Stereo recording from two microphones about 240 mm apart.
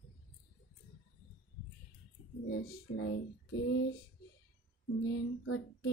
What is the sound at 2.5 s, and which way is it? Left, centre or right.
Speech, left.